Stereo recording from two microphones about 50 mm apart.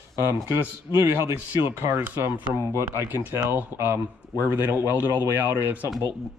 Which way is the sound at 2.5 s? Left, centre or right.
Right.